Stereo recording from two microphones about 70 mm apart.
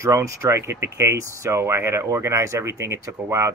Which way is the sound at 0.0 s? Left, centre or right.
Right.